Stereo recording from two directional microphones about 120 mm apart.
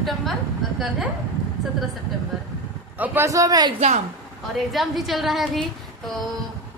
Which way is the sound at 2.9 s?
15° right (ahead or behind).